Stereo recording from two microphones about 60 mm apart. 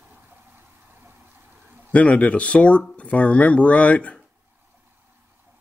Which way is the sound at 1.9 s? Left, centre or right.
Left.